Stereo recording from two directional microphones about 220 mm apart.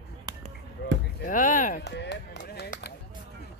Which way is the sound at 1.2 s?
35° left (ahead or behind).